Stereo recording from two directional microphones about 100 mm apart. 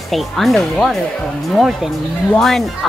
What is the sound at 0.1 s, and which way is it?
Speech, centre (ahead or behind).